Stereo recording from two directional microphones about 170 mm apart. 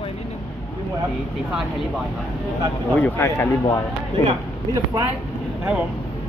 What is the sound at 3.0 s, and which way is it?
Speech, 15° left (ahead or behind).